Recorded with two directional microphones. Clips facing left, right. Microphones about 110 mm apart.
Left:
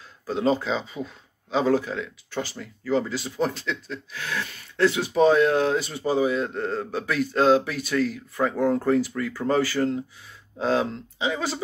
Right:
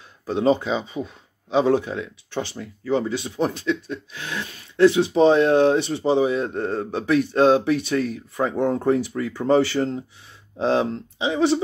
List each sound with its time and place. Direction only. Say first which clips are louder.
0.3 s speech: right 3 dB; 20° right (ahead or behind)